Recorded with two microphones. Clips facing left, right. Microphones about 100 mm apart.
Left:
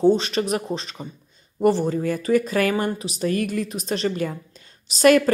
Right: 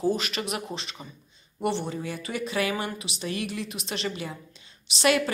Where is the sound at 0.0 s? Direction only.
30° left (ahead or behind).